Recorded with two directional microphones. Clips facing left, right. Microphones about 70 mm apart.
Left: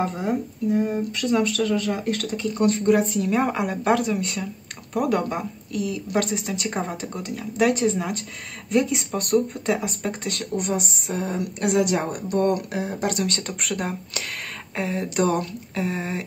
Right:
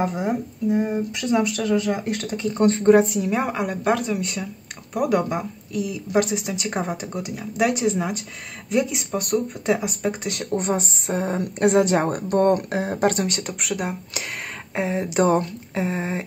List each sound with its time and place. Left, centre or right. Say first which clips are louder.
0.0 s speech: right 1 dB; centre; by 3.1 s right
3.1 s speech: left 1 dB; centre
10.5 s a woman's voice: right 3 dB; right
13.3 s speech: right 1 dB; centre
14.8 s speech: right 3 dB; right